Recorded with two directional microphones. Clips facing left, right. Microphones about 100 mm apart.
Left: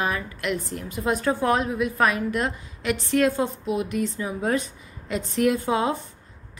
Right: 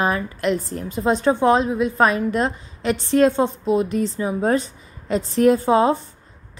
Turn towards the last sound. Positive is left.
turn(degrees=-35)  # may be behind; listen again after turning